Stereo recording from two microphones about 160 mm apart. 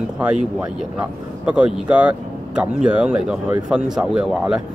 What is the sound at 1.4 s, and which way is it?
Speech, 5° right (ahead or behind).